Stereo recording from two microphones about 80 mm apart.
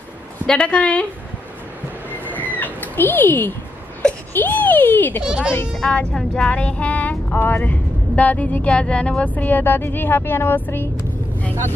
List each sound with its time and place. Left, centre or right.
0.5 s a woman's voice: centre
2.6 s cat: left
4.3 s music: left
5.2 s a child's voice: centre
5.8 s music: centre; by 10.9 s left